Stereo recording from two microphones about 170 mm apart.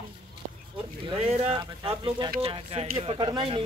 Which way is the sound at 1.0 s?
30° right (ahead or behind).